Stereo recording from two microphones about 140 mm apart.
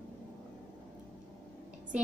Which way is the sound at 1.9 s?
10° right (ahead or behind).